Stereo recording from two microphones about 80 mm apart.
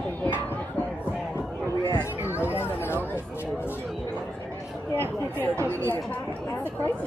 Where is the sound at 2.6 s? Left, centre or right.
Left.